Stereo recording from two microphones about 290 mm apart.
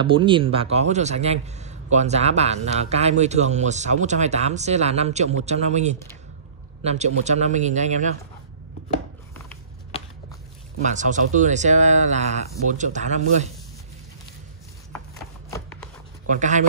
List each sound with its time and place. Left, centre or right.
0.0 s speech: centre
10.8 s speech: right
14.9 s a sound: centre
16.3 s speech: right